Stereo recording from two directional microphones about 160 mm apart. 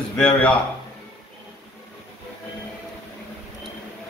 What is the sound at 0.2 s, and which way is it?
Speech, 5° left (ahead or behind).